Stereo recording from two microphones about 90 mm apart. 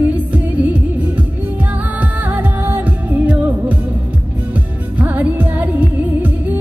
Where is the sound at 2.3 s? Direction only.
20° right (ahead or behind).